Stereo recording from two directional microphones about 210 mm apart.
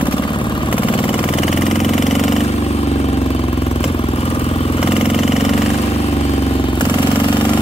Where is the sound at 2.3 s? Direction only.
30° left (ahead or behind).